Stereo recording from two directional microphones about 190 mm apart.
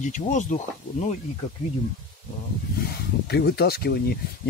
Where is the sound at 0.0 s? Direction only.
40° left (ahead or behind).